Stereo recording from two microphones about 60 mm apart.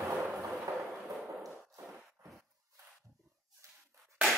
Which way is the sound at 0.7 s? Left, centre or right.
Right.